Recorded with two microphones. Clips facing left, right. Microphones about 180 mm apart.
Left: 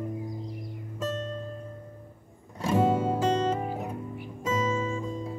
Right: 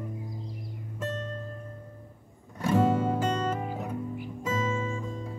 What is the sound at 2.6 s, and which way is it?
Music, 15° left (ahead or behind).